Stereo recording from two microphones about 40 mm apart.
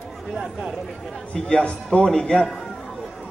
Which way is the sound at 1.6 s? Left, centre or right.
Left.